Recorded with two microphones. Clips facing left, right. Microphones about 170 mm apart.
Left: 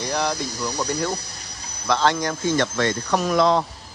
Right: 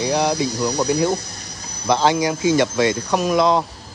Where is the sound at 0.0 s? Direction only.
10° right (ahead or behind).